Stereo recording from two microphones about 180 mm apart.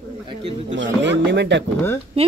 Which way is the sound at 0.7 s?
85° right.